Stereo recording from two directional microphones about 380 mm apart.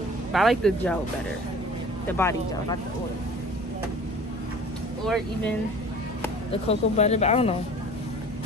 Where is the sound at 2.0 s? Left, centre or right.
Centre.